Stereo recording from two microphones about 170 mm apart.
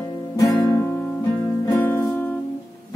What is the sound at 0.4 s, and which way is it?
Guitar, 20° left (ahead or behind).